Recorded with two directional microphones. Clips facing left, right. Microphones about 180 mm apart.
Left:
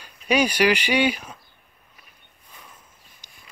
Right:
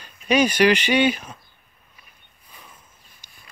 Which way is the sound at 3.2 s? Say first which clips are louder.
Left 1 dB; 15° left (ahead or behind).